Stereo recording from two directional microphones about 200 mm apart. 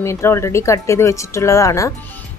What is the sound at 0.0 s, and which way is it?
Speech, 15° left (ahead or behind).